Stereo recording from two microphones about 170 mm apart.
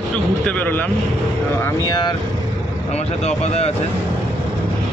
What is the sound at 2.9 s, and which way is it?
Speech, 40° left (ahead or behind).